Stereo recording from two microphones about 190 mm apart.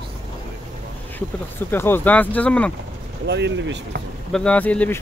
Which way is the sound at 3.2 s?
65° right (ahead or behind).